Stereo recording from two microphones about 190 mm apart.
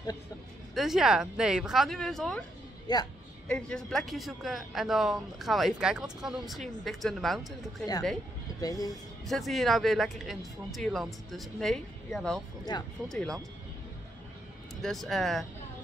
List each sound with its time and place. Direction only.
0.7 s a man's voice: centre (ahead or behind)
2.9 s speech: 20° left (ahead or behind)
3.4 s a man's voice: 5° left (ahead or behind)
8.5 s speech: 20° left (ahead or behind)
9.3 s a man's voice: centre (ahead or behind)
12.7 s speech: 20° left (ahead or behind)
13.1 s a man's voice: 5° left (ahead or behind)
14.8 s a man's voice: centre (ahead or behind)